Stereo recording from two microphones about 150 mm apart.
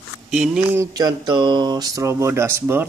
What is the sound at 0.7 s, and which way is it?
Speech, 25° right (ahead or behind).